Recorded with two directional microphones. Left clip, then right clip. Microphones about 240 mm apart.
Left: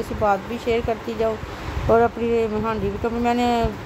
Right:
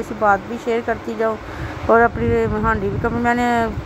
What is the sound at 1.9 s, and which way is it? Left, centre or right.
Speech, centre.